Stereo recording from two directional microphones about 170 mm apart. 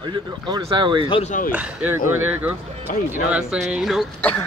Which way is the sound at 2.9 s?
50° left (ahead or behind).